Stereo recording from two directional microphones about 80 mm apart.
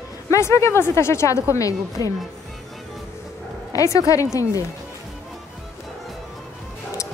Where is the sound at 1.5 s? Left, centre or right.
Left.